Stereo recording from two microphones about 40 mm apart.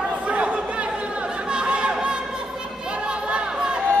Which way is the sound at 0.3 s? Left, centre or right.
Right.